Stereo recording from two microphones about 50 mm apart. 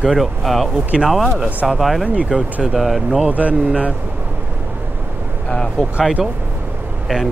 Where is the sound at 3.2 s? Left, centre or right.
Right.